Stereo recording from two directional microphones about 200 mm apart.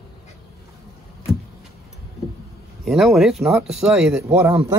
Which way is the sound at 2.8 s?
Centre (ahead or behind).